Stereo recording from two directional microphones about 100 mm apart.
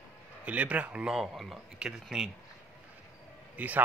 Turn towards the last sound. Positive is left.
turn(degrees=-15)  # may be behind; listen again after turning